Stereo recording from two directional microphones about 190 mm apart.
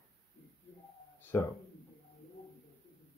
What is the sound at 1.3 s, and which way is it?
Speech, 15° left (ahead or behind).